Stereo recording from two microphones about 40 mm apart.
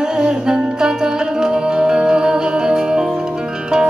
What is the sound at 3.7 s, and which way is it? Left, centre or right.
Zither, centre.